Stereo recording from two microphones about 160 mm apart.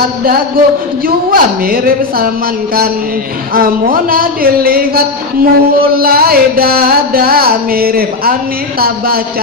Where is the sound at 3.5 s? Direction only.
65° right (ahead or behind).